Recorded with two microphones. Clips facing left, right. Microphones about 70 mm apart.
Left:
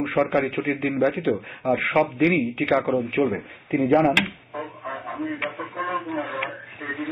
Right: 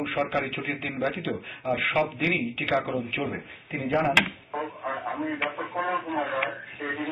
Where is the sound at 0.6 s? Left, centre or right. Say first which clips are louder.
Left 8 dB; left.